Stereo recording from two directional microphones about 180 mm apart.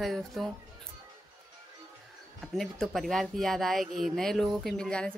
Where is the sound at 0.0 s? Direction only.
Centre (ahead or behind).